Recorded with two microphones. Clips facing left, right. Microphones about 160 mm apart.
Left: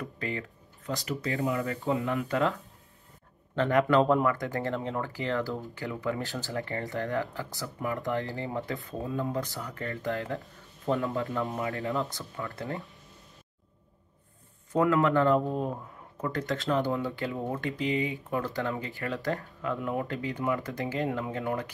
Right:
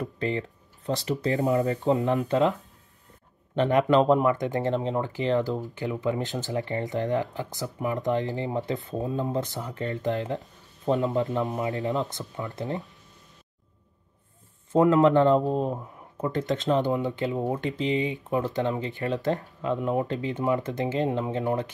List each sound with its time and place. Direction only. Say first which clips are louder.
0.0 s speech: right 6 dB; 25° right (ahead or behind)
3.5 s speech: right 3 dB; 20° right (ahead or behind)
14.7 s speech: right 5 dB; 20° right (ahead or behind)